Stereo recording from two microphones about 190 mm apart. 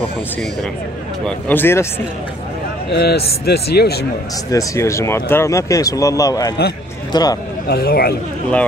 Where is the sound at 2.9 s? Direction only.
60° left (ahead or behind).